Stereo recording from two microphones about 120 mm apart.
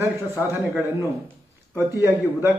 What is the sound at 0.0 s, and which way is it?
A man's voice, 20° right (ahead or behind).